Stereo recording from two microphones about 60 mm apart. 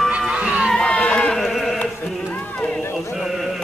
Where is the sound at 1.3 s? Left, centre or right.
Centre.